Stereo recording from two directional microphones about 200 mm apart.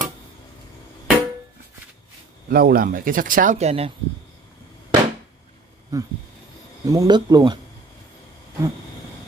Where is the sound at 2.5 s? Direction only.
50° right (ahead or behind); by 3.9 s 35° right (ahead or behind).